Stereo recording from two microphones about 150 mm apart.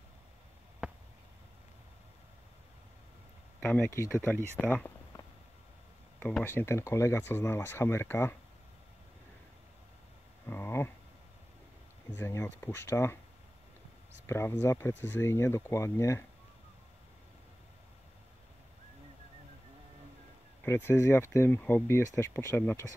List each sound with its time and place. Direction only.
0.8 s a sound: 5° right (ahead or behind)
3.6 s speech: 15° left (ahead or behind)
6.1 s speech: 10° left (ahead or behind)
10.5 s a sound: 15° left (ahead or behind)
12.2 s speech: 20° left (ahead or behind)
14.2 s speech: 15° left (ahead or behind)
20.6 s speech: 15° left (ahead or behind)